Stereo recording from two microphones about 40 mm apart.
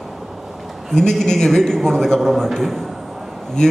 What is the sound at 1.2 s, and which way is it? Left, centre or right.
A man's voice, centre.